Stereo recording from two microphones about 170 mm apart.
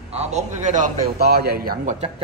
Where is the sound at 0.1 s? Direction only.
40° right (ahead or behind).